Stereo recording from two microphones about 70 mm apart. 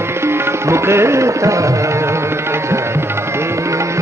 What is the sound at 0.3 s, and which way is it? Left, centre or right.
Tabla, right.